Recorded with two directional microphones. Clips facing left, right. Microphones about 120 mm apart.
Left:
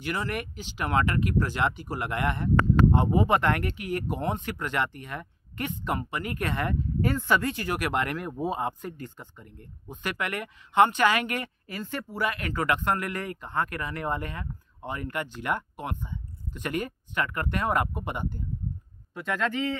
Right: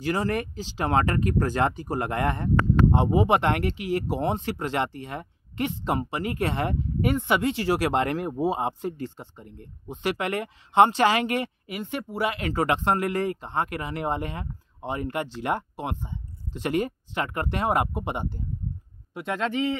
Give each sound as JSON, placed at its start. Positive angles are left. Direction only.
{"t": 0.0, "sound": "speech", "side_deg": -35}
{"t": 2.9, "sound": "speech", "side_deg": -25}